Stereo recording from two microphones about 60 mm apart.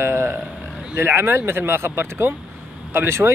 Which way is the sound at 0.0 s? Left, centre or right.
Right.